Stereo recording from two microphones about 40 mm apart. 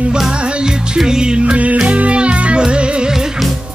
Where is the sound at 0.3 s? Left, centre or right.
Right.